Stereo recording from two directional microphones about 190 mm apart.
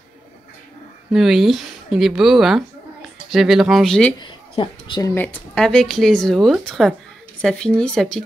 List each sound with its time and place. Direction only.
1.1 s speech: centre (ahead or behind)
4.2 s a sound: 25° left (ahead or behind)
5.1 s speech: 10° left (ahead or behind)